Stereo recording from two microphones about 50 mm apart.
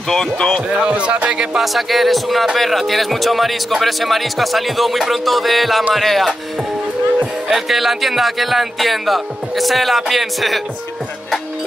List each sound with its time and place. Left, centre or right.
0.1 s speech: centre
0.7 s speech: right
1.6 s speech: centre
7.4 s speech: centre